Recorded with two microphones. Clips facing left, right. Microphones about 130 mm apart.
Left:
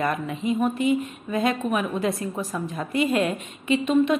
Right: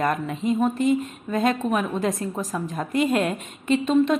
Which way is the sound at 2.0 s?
40° right (ahead or behind).